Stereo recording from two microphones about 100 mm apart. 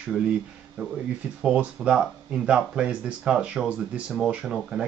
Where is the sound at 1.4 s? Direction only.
10° right (ahead or behind).